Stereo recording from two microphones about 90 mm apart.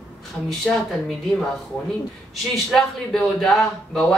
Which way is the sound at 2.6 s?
5° left (ahead or behind).